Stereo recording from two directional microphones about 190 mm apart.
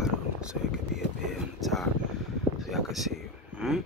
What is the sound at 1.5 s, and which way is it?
Speech, centre (ahead or behind).